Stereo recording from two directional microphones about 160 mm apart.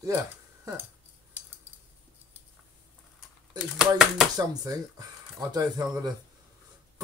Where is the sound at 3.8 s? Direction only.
5° right (ahead or behind).